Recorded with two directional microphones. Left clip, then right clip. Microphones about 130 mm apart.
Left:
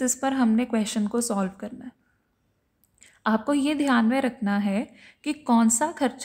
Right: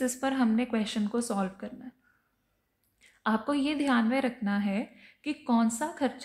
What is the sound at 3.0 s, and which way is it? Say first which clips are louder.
A woman's voice: left 5 dB; 30° left (ahead or behind).